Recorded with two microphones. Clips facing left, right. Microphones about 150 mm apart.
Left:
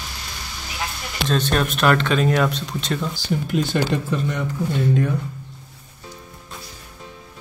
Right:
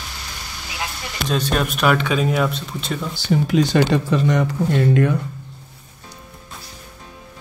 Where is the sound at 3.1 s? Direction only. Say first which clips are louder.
Right 10 dB; 80° right.